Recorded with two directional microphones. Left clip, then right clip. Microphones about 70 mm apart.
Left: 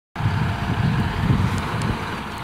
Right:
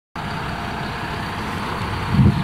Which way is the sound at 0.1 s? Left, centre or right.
Centre.